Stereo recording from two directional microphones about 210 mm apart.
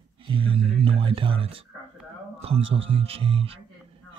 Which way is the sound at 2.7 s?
25° right (ahead or behind).